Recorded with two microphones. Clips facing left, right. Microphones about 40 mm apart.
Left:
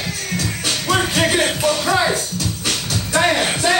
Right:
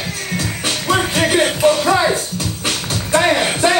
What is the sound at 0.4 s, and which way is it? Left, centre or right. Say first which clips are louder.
Music: right 2 dB; right.